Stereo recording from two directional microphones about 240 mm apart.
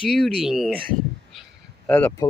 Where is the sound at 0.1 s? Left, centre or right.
Centre.